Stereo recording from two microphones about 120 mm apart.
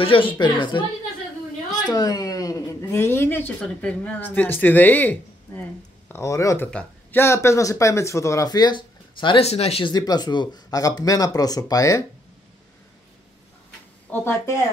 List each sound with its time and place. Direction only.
0.0 s a woman's voice: 45° left (ahead or behind)
1.7 s a woman's voice: 35° left (ahead or behind); by 5.6 s 10° left (ahead or behind)
6.0 s speech: 25° left (ahead or behind)
6.7 s speech: 10° left (ahead or behind)
7.2 s speech: 20° left (ahead or behind); by 9.4 s 40° left (ahead or behind)
9.4 s speech: 60° left (ahead or behind)
9.8 s speech: 35° left (ahead or behind)
14.1 s a woman's voice: 20° left (ahead or behind)